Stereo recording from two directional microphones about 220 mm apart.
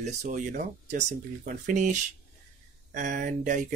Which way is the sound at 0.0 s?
35° right (ahead or behind).